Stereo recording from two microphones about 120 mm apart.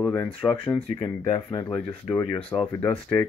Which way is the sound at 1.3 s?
35° left (ahead or behind).